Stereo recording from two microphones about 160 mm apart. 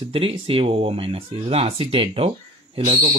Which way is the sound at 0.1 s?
35° right (ahead or behind).